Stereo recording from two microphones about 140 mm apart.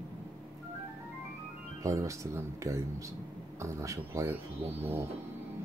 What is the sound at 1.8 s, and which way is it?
Speech, 20° right (ahead or behind).